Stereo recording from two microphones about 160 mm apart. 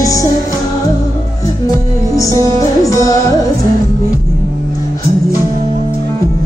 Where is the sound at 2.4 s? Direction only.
20° left (ahead or behind).